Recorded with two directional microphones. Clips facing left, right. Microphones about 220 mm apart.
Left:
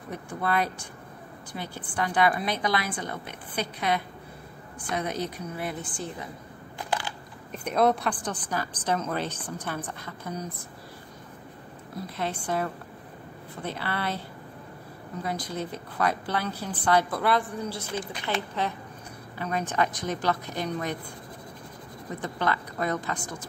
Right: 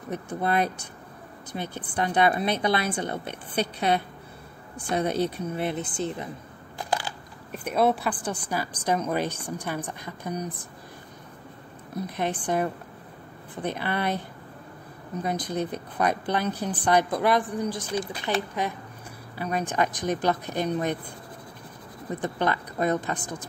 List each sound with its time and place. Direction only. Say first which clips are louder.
0.1 s a woman's voice: right 2 dB; 20° right (ahead or behind)
7.5 s a woman's voice: even; 5° right (ahead or behind)
12.0 s a woman's voice: right 3 dB; 15° right (ahead or behind)
15.2 s a woman's voice: right 4 dB; 20° right (ahead or behind)
19.3 s a woman's voice: right 1 dB; 15° right (ahead or behind)
22.2 s a woman's voice: right 2 dB; 20° right (ahead or behind)